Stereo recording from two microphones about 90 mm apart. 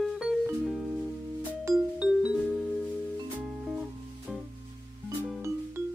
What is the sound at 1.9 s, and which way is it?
Music, 10° right (ahead or behind).